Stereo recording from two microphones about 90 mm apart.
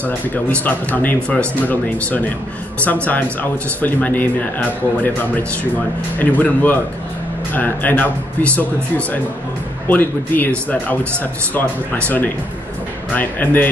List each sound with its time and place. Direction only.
0.3 s speech: 15° left (ahead or behind)